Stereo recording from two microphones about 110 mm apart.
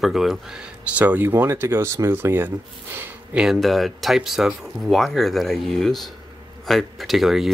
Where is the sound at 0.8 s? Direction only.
15° right (ahead or behind).